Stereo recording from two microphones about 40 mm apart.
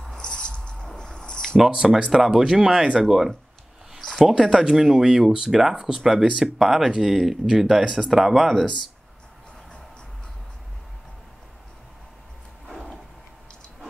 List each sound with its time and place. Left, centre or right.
0.0 s music: centre
0.9 s a sound: centre
1.8 s speech: centre
7.8 s speech: centre
8.1 s speech: centre